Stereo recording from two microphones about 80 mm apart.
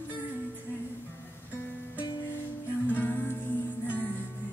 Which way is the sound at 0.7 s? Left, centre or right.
Left.